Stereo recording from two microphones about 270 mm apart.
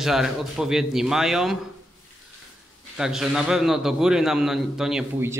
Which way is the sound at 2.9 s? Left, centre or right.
Centre.